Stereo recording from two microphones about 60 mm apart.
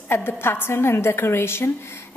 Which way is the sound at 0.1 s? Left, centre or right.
Left.